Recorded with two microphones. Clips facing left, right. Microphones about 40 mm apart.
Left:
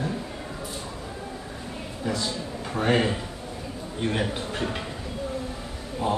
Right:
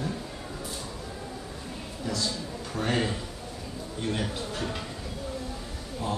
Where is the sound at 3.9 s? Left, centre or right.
Left.